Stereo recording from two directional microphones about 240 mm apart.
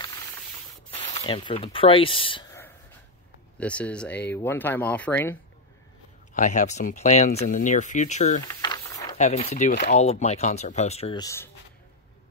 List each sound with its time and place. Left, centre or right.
0.9 s speech: left
3.5 s speech: centre
6.3 s speech: left
8.5 s a sound: centre
9.2 s speech: left; by 11.5 s centre